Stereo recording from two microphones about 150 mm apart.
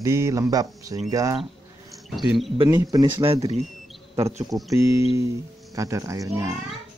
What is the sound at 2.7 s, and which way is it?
Speech, 20° right (ahead or behind).